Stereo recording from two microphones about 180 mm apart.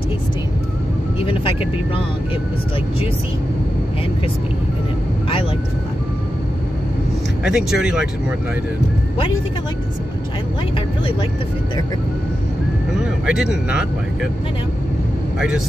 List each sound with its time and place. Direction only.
1.2 s speech: 30° left (ahead or behind)
7.4 s speech: 5° right (ahead or behind)
13.2 s speech: 5° right (ahead or behind)
15.3 s speech: 5° right (ahead or behind)